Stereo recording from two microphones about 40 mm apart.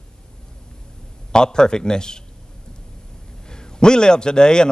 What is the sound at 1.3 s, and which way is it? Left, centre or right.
Speech, centre.